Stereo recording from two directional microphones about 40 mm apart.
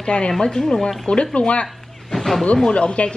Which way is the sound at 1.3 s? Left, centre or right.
Left.